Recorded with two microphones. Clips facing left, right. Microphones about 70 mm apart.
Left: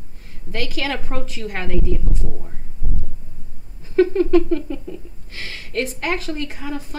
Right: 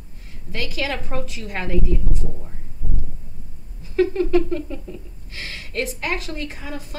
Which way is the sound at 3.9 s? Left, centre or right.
Left.